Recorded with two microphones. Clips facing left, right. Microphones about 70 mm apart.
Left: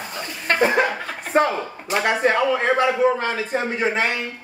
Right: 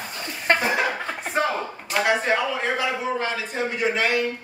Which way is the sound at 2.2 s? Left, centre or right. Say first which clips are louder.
Left 5 dB; left.